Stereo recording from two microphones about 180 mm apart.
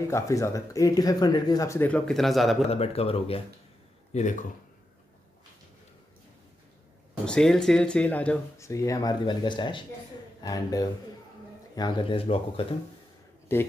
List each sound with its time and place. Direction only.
0.1 s speech: 15° left (ahead or behind); by 2.6 s centre (ahead or behind)
2.7 s speech: 35° left (ahead or behind)
7.2 s speech: 5° left (ahead or behind); by 12.6 s 30° left (ahead or behind)